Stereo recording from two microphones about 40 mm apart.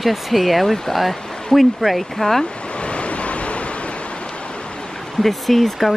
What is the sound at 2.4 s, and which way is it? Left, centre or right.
Waves, left.